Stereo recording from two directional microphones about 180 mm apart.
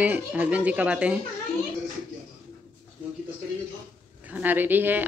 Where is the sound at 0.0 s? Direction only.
10° right (ahead or behind).